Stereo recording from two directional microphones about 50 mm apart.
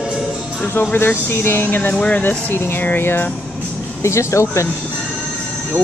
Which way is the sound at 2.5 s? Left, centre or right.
Left.